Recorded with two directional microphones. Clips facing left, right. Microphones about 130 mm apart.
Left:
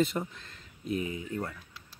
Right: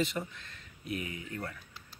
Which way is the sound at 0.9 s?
30° left (ahead or behind).